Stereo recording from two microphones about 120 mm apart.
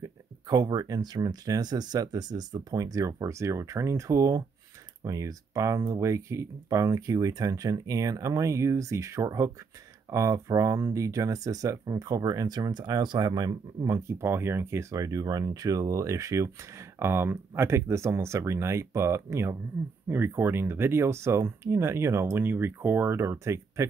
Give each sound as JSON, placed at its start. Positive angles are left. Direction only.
{"t": 0.0, "sound": "speech", "side_deg": -30}